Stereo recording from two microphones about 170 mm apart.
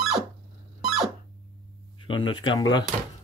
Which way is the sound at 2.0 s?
30° left (ahead or behind).